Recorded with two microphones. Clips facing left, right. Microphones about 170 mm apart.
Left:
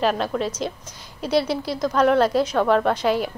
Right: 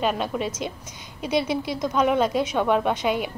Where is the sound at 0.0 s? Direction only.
Centre (ahead or behind).